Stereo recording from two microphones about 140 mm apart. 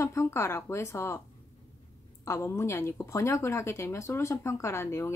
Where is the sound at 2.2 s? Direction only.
20° left (ahead or behind).